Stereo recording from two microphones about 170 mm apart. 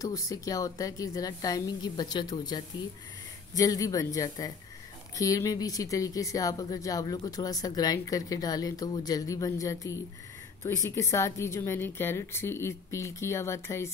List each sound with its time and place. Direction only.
0.0 s a woman's voice: 20° left (ahead or behind)